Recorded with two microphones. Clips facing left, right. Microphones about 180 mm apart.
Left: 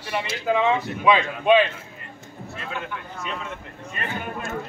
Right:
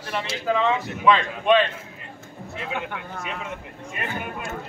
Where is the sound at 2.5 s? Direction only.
15° right (ahead or behind).